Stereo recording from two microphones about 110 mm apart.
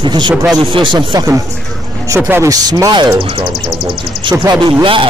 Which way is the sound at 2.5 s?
40° right (ahead or behind).